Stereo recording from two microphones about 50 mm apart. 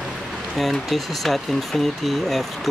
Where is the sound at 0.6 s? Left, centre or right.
Centre.